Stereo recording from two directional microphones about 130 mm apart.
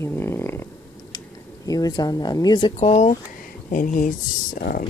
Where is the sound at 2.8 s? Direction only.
60° left (ahead or behind).